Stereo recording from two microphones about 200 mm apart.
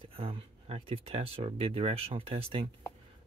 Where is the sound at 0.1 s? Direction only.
30° right (ahead or behind).